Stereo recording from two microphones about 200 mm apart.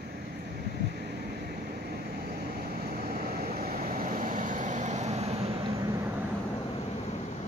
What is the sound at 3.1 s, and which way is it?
Vehicle, 50° right (ahead or behind).